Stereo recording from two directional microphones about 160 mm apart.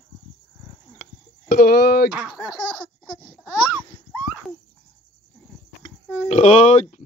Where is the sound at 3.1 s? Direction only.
60° left (ahead or behind).